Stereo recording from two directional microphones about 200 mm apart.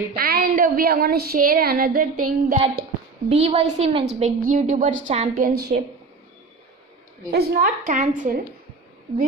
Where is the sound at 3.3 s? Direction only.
30° right (ahead or behind).